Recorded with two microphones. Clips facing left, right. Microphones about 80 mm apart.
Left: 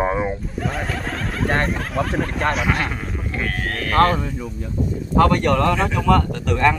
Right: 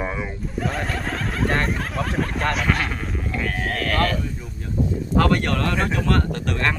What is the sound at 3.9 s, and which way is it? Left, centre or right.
Speech, left.